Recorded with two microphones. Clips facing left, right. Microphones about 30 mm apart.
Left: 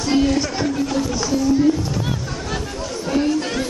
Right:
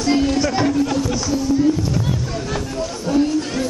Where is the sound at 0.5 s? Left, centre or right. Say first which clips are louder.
Right 4 dB; centre.